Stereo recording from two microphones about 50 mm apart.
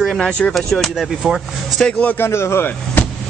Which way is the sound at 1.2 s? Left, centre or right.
Centre.